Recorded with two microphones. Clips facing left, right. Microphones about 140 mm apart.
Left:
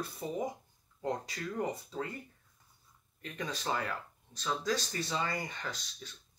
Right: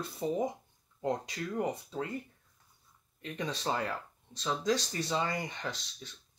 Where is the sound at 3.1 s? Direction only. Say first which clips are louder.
Right 3 dB; 25° right (ahead or behind).